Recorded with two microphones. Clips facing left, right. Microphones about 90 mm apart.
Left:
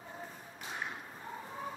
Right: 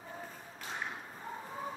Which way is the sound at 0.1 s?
5° left (ahead or behind).